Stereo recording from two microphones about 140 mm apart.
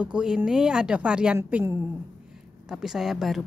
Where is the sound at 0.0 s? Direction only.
5° right (ahead or behind).